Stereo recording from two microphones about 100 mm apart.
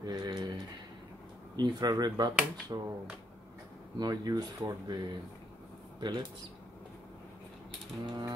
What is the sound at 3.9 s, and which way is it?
Speech, 40° right (ahead or behind).